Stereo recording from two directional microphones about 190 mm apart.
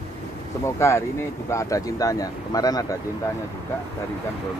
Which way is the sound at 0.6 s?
15° left (ahead or behind).